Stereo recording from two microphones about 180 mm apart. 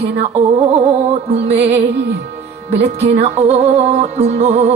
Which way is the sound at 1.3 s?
35° right (ahead or behind).